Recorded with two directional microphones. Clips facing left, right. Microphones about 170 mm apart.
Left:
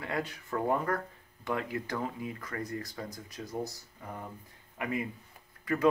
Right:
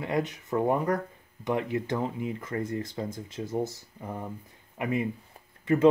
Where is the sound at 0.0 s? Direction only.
20° right (ahead or behind).